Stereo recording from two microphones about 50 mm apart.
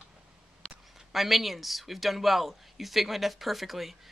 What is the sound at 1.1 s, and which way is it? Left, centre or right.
Speech, centre.